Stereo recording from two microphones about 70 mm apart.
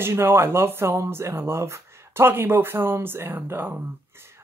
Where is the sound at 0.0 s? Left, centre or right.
Right.